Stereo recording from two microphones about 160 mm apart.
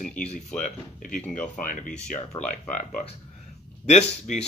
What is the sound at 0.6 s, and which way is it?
Speech, 55° left (ahead or behind).